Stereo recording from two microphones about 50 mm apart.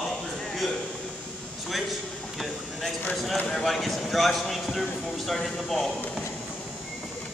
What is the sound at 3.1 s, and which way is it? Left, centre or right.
Speech, centre.